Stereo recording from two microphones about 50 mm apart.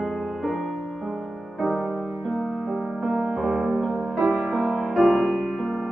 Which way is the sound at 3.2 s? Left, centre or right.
Centre.